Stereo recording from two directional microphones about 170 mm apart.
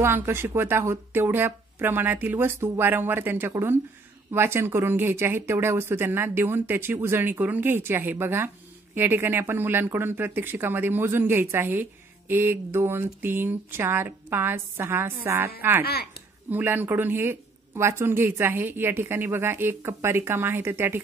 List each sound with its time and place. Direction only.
0.0 s speech: 15° right (ahead or behind)
15.8 s speech: 70° left (ahead or behind)
16.4 s speech: 10° right (ahead or behind)